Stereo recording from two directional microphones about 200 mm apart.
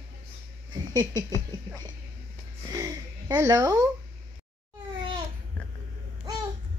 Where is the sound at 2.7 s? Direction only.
15° right (ahead or behind).